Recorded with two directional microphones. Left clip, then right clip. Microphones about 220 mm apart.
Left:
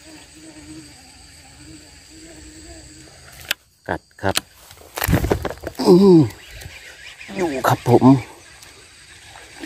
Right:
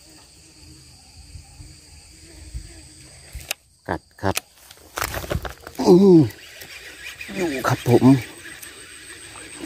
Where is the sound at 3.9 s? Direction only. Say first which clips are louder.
Left 2 dB; 10° right (ahead or behind).